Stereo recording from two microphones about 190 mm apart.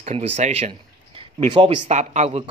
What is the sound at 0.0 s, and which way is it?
Speech, 35° right (ahead or behind).